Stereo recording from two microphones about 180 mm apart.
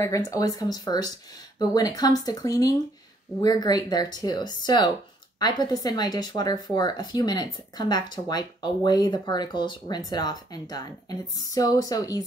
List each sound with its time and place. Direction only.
0.0 s speech: 20° left (ahead or behind)